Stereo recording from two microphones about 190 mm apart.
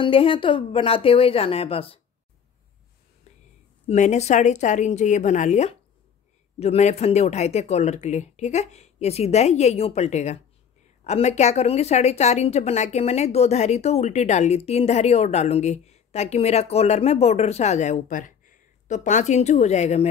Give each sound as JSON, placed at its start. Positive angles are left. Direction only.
{"t": 0.0, "sound": "a woman's voice", "side_deg": 25}
{"t": 3.8, "sound": "a woman's voice", "side_deg": 35}